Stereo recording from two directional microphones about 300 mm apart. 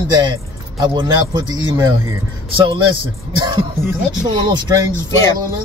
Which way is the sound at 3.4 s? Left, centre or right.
Centre.